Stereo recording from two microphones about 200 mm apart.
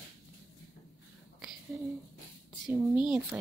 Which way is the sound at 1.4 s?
Centre (ahead or behind).